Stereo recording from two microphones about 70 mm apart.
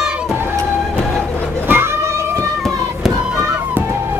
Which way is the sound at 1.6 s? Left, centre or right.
Right.